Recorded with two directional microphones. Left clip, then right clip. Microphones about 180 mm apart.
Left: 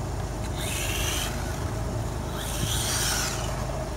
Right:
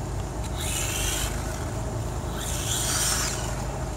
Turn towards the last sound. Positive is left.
turn(degrees=0)  # may be behind; listen again after turning